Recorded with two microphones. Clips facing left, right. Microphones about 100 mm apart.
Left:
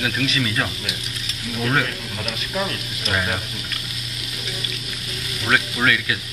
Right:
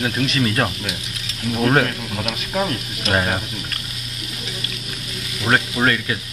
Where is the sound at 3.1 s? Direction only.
40° right (ahead or behind).